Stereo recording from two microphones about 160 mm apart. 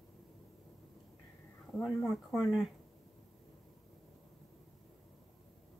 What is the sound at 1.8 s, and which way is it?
Speech, centre (ahead or behind).